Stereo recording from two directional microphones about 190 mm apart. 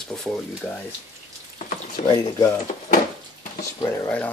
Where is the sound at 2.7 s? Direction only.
35° left (ahead or behind).